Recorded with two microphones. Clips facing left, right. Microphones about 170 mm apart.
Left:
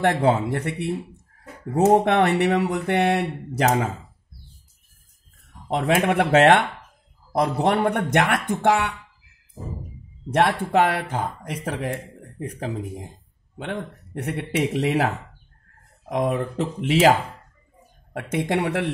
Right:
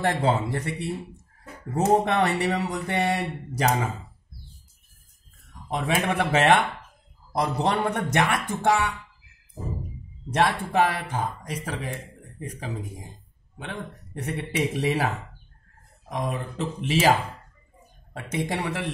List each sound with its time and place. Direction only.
0.0 s speech: 60° left (ahead or behind)
2.0 s speech: 60° left (ahead or behind)
5.7 s speech: 60° left (ahead or behind)
10.3 s speech: 60° left (ahead or behind)
16.1 s speech: 60° left (ahead or behind)
18.1 s speech: 60° left (ahead or behind)